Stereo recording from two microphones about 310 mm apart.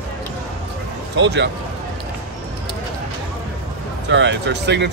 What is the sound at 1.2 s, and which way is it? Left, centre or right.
Speech, right.